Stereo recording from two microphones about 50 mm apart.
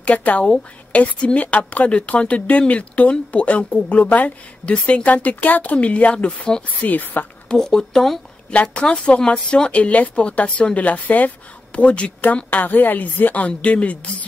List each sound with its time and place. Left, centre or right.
0.0 s speech: left
6.9 s a woman's voice: left
7.4 s speech: centre
8.5 s speech: left
12.4 s a woman's voice: left